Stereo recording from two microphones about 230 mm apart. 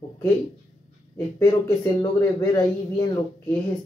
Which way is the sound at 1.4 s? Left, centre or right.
Centre.